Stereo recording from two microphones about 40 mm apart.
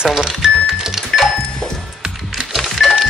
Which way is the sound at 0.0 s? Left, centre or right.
Centre.